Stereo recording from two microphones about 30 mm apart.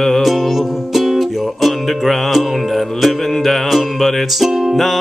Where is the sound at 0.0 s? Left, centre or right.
Centre.